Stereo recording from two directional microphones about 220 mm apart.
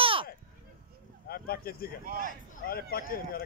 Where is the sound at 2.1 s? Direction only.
40° right (ahead or behind).